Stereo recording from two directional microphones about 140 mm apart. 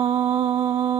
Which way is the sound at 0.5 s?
20° right (ahead or behind).